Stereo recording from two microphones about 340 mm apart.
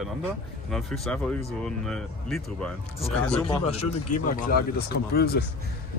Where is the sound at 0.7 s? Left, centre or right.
Centre.